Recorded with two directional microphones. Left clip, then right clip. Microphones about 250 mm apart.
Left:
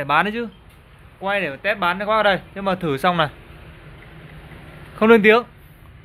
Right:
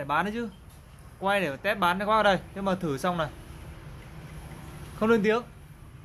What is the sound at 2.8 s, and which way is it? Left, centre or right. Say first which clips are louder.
Speech: left 10 dB; centre.